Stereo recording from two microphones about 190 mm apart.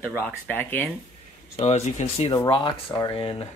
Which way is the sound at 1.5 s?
35° left (ahead or behind).